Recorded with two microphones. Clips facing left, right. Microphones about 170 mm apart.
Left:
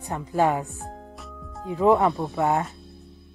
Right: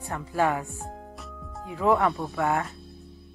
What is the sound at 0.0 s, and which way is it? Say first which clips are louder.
Speech: left 3 dB; 20° left (ahead or behind).